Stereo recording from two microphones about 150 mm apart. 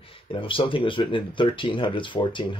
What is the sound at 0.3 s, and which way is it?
Speech, 35° left (ahead or behind).